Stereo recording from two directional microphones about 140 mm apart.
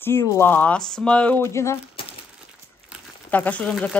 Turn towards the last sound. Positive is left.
turn(degrees=5)  # may be behind; listen again after turning